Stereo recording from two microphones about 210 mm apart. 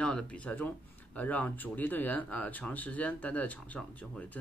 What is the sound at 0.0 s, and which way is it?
Speech, 5° left (ahead or behind).